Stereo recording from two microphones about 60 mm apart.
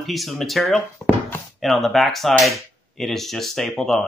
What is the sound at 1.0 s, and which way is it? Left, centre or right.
Speech, left.